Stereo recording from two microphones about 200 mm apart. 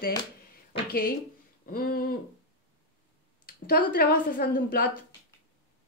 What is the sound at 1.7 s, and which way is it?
Speech, 45° left (ahead or behind).